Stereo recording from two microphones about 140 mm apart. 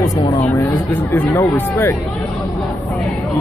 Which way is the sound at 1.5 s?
15° left (ahead or behind).